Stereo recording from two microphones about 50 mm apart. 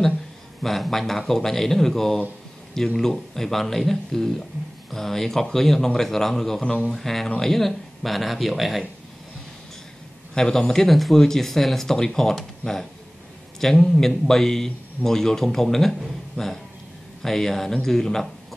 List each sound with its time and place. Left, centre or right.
0.6 s speech: centre
10.3 s speech: centre
16.4 s speech: left
17.2 s speech: centre